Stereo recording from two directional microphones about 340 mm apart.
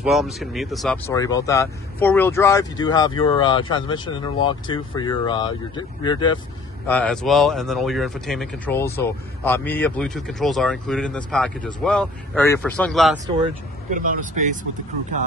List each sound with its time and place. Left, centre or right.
0.0 s speech: centre
6.9 s speech: centre
14.4 s speech: right